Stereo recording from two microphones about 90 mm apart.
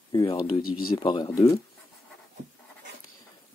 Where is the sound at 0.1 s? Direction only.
55° left (ahead or behind).